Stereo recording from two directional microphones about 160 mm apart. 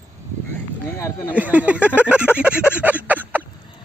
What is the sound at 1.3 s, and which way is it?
Speech, 10° right (ahead or behind).